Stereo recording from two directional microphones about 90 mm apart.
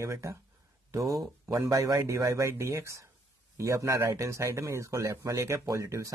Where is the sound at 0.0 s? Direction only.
35° right (ahead or behind).